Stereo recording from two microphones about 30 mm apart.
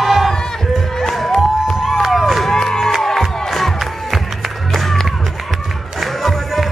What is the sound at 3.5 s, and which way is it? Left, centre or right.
Crowd, centre.